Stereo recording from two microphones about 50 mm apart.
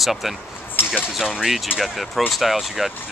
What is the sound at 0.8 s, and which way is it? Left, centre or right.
Speech, left.